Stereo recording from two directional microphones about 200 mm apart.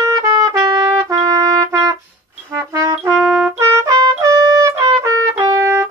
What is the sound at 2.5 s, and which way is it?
Brass instrument, 15° right (ahead or behind).